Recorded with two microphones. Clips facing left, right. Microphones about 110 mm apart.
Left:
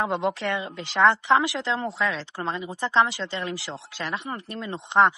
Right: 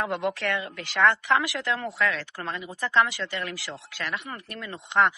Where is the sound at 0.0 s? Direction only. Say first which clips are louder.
Left 2 dB; 25° left (ahead or behind).